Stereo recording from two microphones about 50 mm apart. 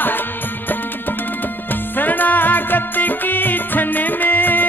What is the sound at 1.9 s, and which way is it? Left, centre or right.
Music, left.